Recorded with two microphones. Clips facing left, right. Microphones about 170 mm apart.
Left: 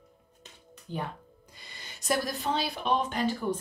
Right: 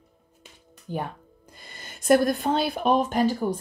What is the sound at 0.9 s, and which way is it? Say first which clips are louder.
Speech: right 4 dB; 45° right (ahead or behind).